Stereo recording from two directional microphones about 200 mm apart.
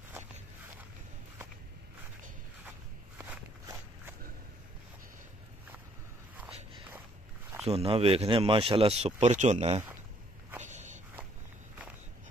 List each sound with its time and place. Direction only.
3.2 s walk: 10° right (ahead or behind)
7.6 s speech: 30° right (ahead or behind)
10.6 s walk: 35° right (ahead or behind)